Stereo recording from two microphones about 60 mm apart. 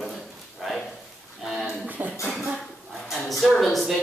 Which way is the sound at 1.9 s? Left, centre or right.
Right.